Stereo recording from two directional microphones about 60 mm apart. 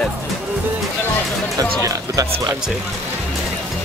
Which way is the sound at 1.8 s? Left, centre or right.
Right.